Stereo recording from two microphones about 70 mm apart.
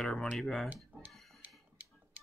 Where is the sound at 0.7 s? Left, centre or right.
Right.